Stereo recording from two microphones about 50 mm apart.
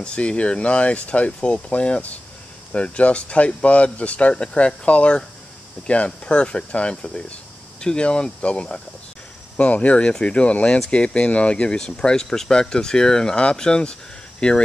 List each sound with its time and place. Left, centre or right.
0.0 s speech: left